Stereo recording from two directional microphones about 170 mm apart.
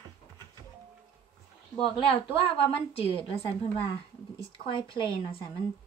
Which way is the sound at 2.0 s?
30° left (ahead or behind).